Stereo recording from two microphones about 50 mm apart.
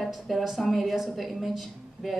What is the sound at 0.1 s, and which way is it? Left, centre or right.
A woman's voice, centre.